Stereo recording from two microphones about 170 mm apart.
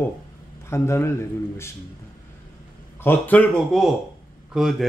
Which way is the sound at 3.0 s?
10° left (ahead or behind).